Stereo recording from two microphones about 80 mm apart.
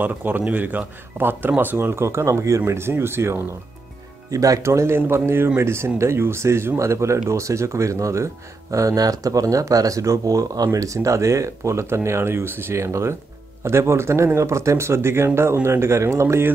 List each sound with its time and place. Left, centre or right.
0.0 s speech: right
4.3 s speech: right